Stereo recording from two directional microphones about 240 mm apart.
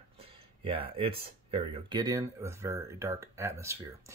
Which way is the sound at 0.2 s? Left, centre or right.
Right.